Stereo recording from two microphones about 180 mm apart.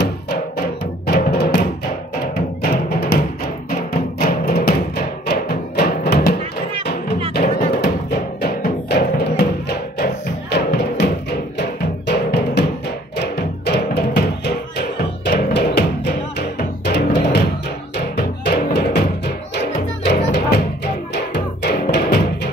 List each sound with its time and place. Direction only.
1.0 s music: 55° left (ahead or behind)
4.3 s music: 60° left (ahead or behind)
7.3 s music: 60° left (ahead or behind)
18.4 s music: 60° left (ahead or behind)
20.2 s music: 75° left (ahead or behind)
21.1 s music: 65° left (ahead or behind)